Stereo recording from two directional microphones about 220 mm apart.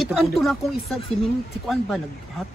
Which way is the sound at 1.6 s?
Centre (ahead or behind).